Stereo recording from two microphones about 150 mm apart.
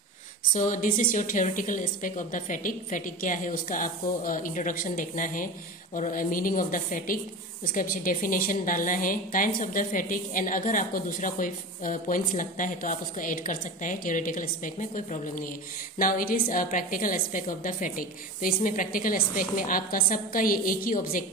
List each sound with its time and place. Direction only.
0.6 s a woman's voice: 60° left (ahead or behind)
16.0 s a woman's voice: 70° left (ahead or behind)